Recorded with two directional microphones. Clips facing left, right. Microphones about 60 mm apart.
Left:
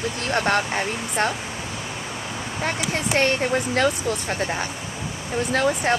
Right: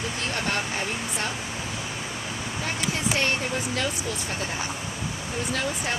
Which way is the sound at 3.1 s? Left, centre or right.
Left.